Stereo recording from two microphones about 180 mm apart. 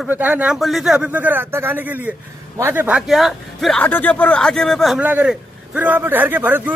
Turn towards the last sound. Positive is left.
turn(degrees=-10)  # may be behind; listen again after turning